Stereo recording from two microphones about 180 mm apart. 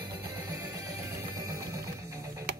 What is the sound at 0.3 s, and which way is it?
Music, 20° right (ahead or behind).